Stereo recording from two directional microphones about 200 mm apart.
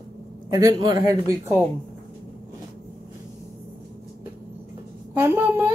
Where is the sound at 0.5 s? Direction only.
15° right (ahead or behind).